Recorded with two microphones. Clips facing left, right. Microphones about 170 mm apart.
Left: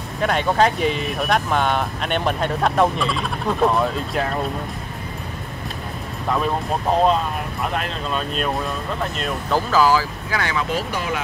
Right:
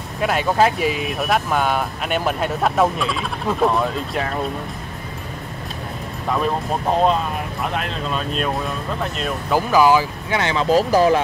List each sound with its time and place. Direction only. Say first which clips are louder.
0.2 s speech: right 1 dB; 5° right (ahead or behind)
6.2 s speech: right 1 dB; centre (ahead or behind)
9.5 s speech: right 3 dB; 15° right (ahead or behind); by 11.1 s 35° right (ahead or behind)